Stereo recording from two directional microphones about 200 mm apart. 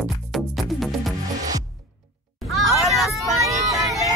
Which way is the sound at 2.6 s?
Centre (ahead or behind).